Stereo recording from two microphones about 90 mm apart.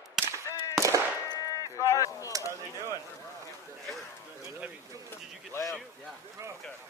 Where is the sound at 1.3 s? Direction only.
40° left (ahead or behind).